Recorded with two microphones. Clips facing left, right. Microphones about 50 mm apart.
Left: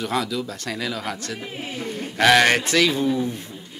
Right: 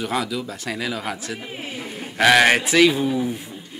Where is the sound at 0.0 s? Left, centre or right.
Centre.